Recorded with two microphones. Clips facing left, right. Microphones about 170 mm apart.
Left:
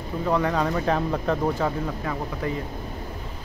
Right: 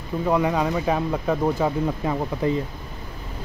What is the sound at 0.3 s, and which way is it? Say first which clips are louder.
Speech: right 2 dB; 10° right (ahead or behind).